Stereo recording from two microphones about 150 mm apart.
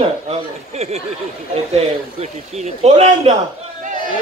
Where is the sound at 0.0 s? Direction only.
45° right (ahead or behind).